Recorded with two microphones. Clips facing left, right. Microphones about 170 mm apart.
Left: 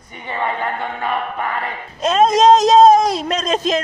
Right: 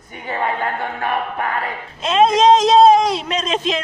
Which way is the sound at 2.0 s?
40° left (ahead or behind).